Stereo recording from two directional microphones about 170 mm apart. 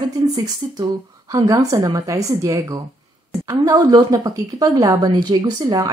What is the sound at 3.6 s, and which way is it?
Speech, 20° right (ahead or behind).